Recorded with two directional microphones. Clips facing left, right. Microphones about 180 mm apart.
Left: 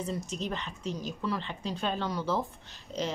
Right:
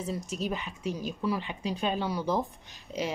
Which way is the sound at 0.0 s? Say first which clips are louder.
Right 1 dB; 5° right (ahead or behind).